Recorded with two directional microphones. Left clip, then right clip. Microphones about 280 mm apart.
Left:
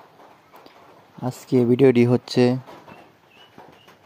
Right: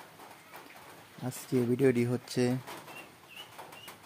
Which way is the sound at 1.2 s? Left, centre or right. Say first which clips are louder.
Left 11 dB; left.